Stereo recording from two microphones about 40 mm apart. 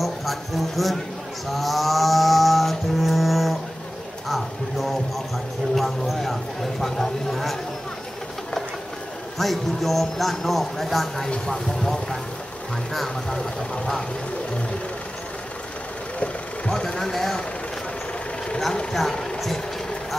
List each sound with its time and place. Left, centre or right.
0.0 s speech: centre
1.5 s music: centre
4.3 s a sound: centre
9.4 s speech: centre
11.2 s speech: left
11.5 s speech: centre
16.7 s speech: centre
18.9 s vehicle: centre